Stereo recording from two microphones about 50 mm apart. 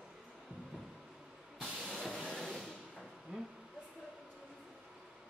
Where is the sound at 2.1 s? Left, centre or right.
Centre.